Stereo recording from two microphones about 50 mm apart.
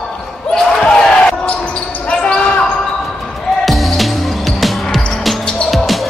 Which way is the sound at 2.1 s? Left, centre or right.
Centre.